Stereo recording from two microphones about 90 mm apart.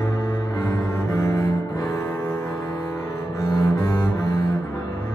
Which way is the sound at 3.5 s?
50° left (ahead or behind).